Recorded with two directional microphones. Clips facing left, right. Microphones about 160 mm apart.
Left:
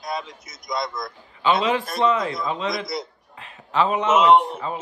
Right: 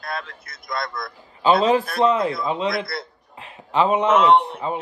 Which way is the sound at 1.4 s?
40° right (ahead or behind).